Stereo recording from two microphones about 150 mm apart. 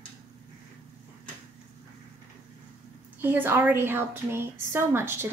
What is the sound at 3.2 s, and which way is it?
A woman's voice, 15° right (ahead or behind).